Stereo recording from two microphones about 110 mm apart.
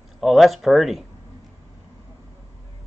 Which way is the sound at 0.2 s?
Centre (ahead or behind).